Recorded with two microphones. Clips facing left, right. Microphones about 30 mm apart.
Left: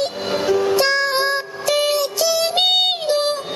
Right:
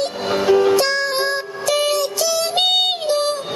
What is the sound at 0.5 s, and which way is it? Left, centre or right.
Music, centre.